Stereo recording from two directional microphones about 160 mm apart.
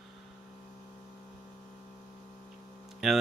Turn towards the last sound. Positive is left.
turn(degrees=0)  # may be behind; listen again after turning